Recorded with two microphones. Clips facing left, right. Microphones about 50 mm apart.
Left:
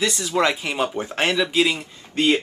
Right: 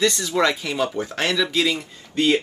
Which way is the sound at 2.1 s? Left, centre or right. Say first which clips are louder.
Even; left.